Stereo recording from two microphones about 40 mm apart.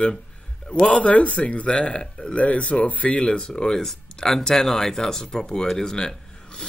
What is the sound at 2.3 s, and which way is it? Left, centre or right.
Speech, left.